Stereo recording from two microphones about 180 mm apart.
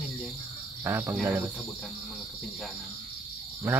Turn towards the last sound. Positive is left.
turn(degrees=-10)  # may be behind; listen again after turning